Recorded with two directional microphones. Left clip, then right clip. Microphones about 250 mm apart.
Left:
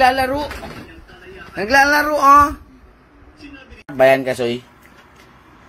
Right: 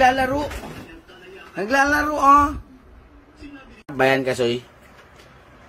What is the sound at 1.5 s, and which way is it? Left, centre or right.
A woman's voice, centre.